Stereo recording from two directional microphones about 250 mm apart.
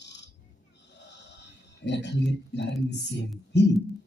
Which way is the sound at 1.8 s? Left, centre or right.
Left.